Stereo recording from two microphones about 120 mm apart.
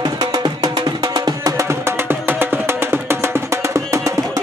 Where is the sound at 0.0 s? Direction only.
35° right (ahead or behind).